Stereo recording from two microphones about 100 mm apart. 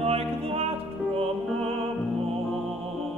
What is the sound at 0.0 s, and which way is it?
Music, 75° right (ahead or behind).